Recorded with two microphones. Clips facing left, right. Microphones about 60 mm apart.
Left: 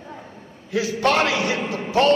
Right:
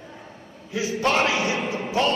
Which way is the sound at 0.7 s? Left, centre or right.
Left.